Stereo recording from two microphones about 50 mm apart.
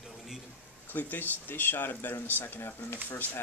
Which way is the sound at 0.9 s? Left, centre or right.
Left.